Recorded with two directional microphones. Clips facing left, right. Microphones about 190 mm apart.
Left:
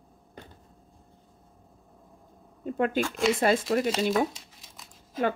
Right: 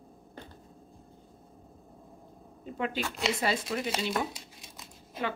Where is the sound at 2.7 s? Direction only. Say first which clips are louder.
Left 7 dB; 50° left (ahead or behind).